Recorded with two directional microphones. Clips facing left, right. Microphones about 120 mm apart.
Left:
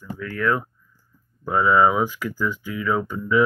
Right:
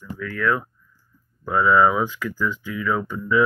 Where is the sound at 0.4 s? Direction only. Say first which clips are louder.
Even; 10° left (ahead or behind).